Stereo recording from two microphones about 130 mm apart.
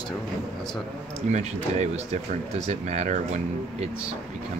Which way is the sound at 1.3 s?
60° right (ahead or behind).